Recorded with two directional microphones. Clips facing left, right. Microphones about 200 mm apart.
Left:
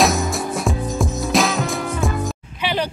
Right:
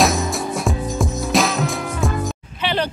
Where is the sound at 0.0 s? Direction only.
Centre (ahead or behind).